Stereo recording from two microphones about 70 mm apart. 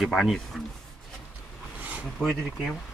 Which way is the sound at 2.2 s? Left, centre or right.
Centre.